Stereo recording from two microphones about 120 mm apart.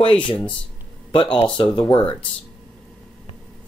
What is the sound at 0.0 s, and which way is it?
Speech, 50° left (ahead or behind).